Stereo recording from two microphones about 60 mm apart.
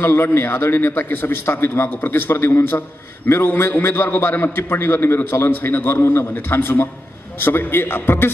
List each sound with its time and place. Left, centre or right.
0.0 s a man's voice: left